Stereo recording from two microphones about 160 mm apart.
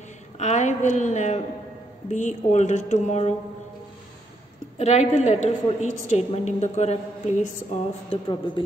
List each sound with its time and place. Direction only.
0.4 s a woman's voice: 45° left (ahead or behind)
4.7 s a woman's voice: 40° left (ahead or behind)
8.1 s speech: 30° left (ahead or behind)